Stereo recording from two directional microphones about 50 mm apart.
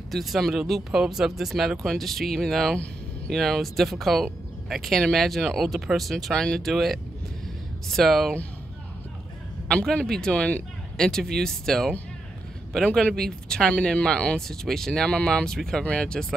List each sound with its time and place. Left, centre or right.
0.1 s speech: centre
6.3 s speech: centre
6.6 s speech: centre
10.0 s speech: centre
10.3 s speech: left
11.0 s speech: centre
13.1 s speech: centre
14.9 s speech: left